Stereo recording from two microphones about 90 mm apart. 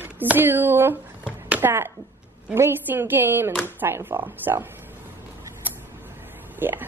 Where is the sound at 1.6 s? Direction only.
25° right (ahead or behind).